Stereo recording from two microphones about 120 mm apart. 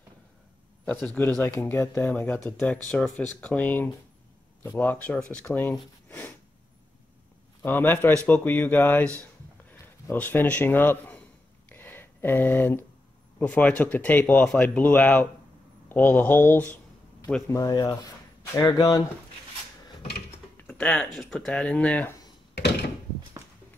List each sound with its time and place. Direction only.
1.0 s speech: 10° left (ahead or behind)
7.6 s a man's voice: 15° left (ahead or behind)
11.7 s a sound: 15° left (ahead or behind)
13.4 s speech: 10° left (ahead or behind)
17.5 s speech: 30° left (ahead or behind)
20.5 s speech: 10° left (ahead or behind)